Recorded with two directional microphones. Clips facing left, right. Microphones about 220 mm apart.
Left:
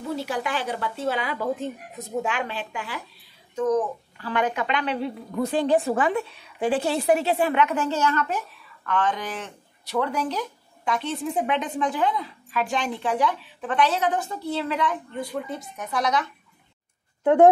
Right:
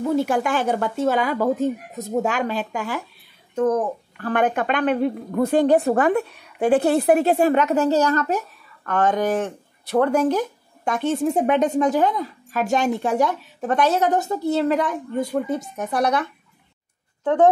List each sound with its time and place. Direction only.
0.0 s a woman's voice: 50° right (ahead or behind)
3.5 s a woman's voice: 55° right (ahead or behind)
17.2 s speech: 10° left (ahead or behind)